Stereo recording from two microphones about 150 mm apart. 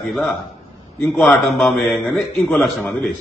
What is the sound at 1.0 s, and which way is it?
Speech, 15° left (ahead or behind).